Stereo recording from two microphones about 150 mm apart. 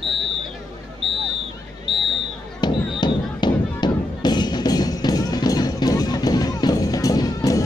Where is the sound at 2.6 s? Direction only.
30° left (ahead or behind).